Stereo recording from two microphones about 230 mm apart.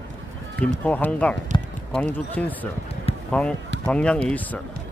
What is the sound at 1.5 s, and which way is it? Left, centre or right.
Clip-clop, centre.